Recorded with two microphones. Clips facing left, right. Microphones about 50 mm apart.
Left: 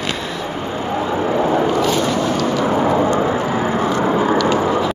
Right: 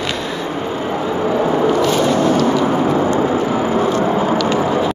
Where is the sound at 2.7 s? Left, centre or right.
Left.